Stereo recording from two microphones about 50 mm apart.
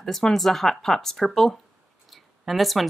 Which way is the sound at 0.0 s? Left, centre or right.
Centre.